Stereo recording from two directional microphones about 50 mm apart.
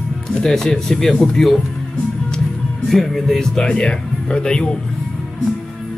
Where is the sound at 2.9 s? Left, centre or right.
Centre.